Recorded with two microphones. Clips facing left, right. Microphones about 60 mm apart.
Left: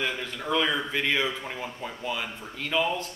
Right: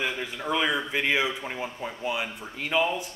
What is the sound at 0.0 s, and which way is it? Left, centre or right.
Speech, centre.